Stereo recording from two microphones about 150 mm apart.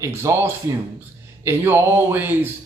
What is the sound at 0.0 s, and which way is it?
A man's voice, 15° right (ahead or behind).